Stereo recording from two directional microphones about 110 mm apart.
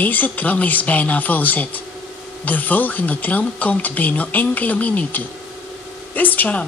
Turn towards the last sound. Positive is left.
turn(degrees=15)  # may be behind; listen again after turning